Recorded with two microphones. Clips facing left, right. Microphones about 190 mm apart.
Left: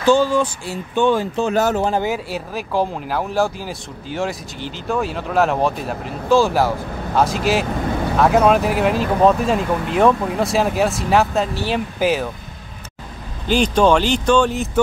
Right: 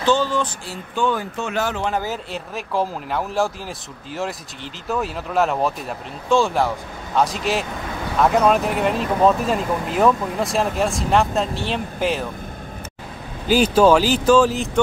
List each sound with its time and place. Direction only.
0.0 s speech: 10° left (ahead or behind)
0.9 s speech: 25° left (ahead or behind); by 2.0 s 40° left (ahead or behind)
2.0 s speech: 5° left (ahead or behind)
13.5 s speech: 5° right (ahead or behind)